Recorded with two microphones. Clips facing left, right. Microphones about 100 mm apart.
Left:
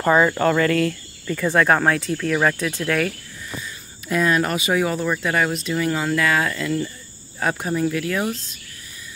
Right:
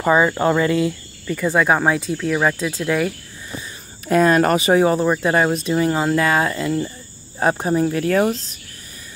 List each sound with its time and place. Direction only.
0.0 s speech: 10° right (ahead or behind)
4.1 s speech: 45° right (ahead or behind)